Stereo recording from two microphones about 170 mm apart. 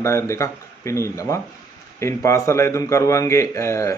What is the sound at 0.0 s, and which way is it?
Speech, 15° left (ahead or behind).